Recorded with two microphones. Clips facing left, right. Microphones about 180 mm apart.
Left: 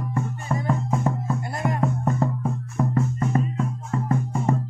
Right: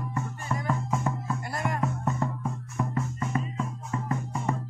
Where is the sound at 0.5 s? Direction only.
25° left (ahead or behind).